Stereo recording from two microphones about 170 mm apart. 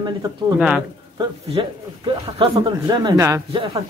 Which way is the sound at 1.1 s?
30° right (ahead or behind).